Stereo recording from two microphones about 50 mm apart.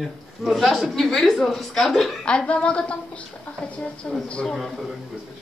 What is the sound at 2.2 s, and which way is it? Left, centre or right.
A woman's voice, left.